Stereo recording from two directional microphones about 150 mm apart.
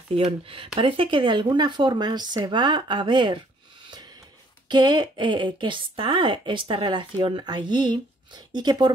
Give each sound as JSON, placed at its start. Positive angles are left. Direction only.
{"t": 0.1, "sound": "speech", "side_deg": -35}
{"t": 4.6, "sound": "speech", "side_deg": -25}